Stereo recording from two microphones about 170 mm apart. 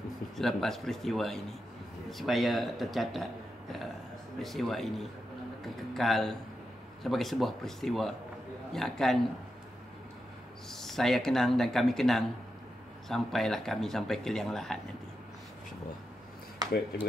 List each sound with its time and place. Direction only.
0.4 s speech: centre (ahead or behind)
4.4 s speech: centre (ahead or behind)
10.7 s speech: centre (ahead or behind)
16.6 s a sound: 20° right (ahead or behind)